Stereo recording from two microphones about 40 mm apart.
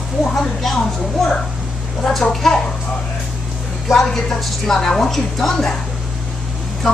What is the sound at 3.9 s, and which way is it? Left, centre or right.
A woman's voice, centre.